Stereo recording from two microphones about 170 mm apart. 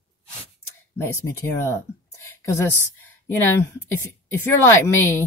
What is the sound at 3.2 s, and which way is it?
A woman's voice, 15° left (ahead or behind).